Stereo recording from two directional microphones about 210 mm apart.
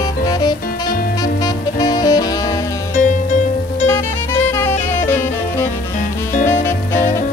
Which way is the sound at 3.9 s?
10° left (ahead or behind).